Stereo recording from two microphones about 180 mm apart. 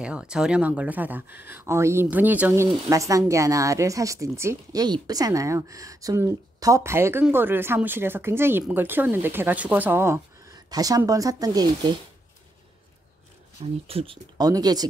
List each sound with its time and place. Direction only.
0.0 s speech: 5° right (ahead or behind)
13.8 s speech: 35° right (ahead or behind)
14.4 s speech: 20° right (ahead or behind)